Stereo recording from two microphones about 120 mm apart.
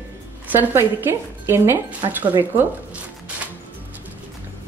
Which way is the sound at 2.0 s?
35° right (ahead or behind).